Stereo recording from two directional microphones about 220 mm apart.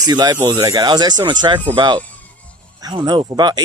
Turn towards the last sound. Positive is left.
turn(degrees=-20)  # may be behind; listen again after turning